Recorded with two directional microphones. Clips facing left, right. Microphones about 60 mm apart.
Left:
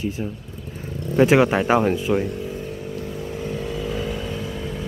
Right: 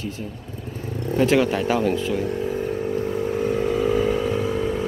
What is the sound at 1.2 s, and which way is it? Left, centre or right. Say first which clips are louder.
Speech: left 3 dB; left.